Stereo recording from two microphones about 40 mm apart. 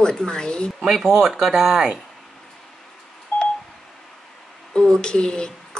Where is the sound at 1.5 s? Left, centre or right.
Centre.